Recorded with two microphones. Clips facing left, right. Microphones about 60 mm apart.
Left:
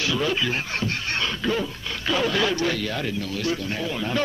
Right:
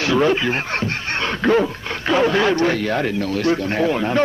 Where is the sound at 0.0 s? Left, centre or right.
Right.